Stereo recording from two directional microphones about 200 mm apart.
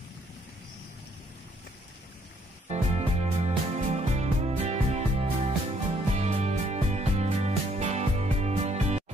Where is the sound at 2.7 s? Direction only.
35° right (ahead or behind).